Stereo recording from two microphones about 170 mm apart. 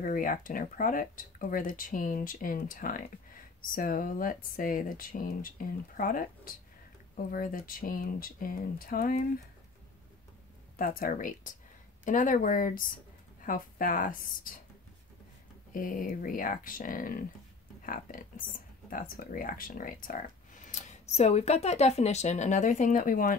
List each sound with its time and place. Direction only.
0.0 s speech: 55° left (ahead or behind)
10.8 s speech: 55° left (ahead or behind)
15.7 s speech: 55° left (ahead or behind)